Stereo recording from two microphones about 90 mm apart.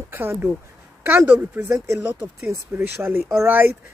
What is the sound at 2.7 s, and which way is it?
Speech, 25° right (ahead or behind).